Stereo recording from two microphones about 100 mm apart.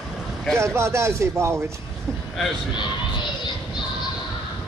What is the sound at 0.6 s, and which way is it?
Speech, 30° right (ahead or behind).